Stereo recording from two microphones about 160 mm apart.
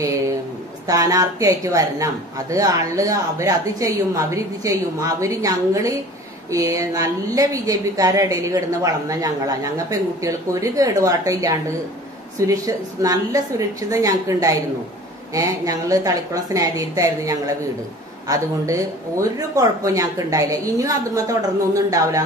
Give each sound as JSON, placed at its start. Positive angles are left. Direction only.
{"t": 0.8, "sound": "speech", "side_deg": -20}